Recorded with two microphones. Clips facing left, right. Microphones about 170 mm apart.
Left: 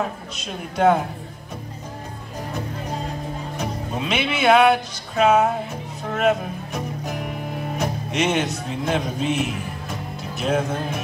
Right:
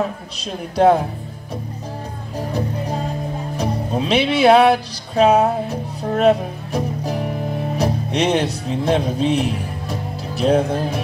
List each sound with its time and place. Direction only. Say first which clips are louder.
0.4 s speech: right 4 dB; 35° right (ahead or behind)
3.5 s speech: right 7 dB; 35° right (ahead or behind)